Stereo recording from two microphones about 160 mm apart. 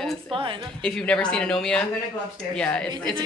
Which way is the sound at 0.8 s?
5° left (ahead or behind).